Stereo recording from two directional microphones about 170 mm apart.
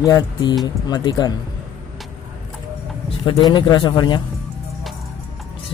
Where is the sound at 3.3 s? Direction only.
25° left (ahead or behind).